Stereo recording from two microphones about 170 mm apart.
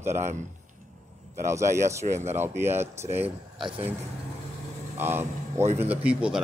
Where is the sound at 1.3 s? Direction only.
15° right (ahead or behind).